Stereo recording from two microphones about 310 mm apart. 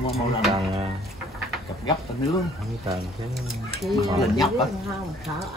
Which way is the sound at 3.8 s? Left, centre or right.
Centre.